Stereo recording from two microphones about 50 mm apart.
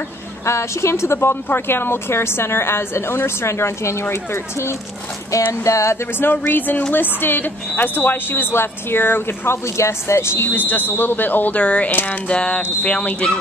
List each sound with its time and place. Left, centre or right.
0.5 s speech: left
5.5 s speech: left
6.4 s speech: left
9.8 s speech: left
10.5 s speech: left
11.9 s speech: left
12.3 s speech: centre